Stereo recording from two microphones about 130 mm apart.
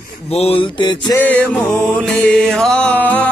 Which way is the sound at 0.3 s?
50° left (ahead or behind).